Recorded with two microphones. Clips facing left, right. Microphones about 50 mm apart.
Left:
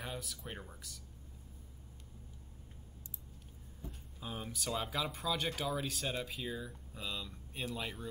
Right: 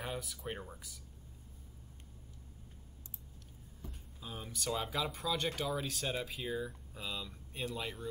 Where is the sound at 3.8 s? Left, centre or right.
Centre.